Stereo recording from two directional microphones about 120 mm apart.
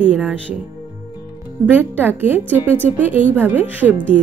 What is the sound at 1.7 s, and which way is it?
Speech, 15° right (ahead or behind).